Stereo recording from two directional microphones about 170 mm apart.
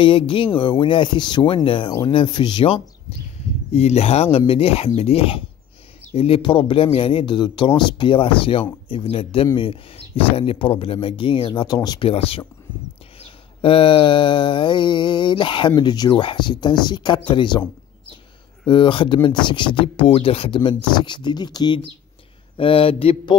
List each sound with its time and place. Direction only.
0.0 s mantra: 30° left (ahead or behind)
3.7 s speech: 40° left (ahead or behind)
13.2 s mantra: 30° left (ahead or behind)
18.7 s mantra: 30° left (ahead or behind)
22.6 s speech: 30° left (ahead or behind)